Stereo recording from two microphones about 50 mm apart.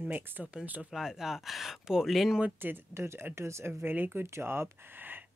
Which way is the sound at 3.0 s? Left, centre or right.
Right.